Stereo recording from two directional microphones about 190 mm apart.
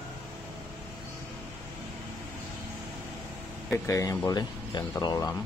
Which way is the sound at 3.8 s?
15° left (ahead or behind).